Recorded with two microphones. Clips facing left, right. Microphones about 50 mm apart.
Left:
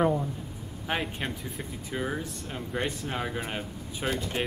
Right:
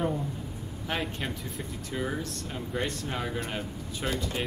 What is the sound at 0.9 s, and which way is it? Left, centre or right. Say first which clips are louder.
Speech: left 1 dB; centre.